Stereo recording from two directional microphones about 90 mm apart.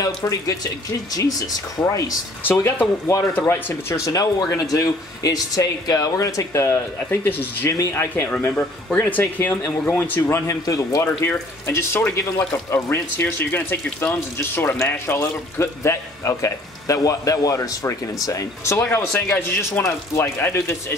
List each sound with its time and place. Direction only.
0.0 s speech: 40° left (ahead or behind)
1.8 s speech: 40° left (ahead or behind); by 3.7 s 20° left (ahead or behind)
3.9 s speech: 40° left (ahead or behind)
10.4 s speech: 40° left (ahead or behind)
11.2 s speech: 30° left (ahead or behind)